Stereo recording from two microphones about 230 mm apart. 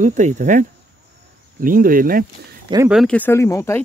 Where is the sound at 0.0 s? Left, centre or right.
Right.